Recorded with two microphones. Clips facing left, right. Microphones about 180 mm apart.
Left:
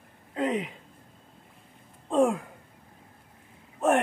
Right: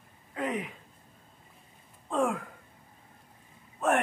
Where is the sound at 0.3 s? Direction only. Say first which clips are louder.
Left 5 dB; 25° left (ahead or behind).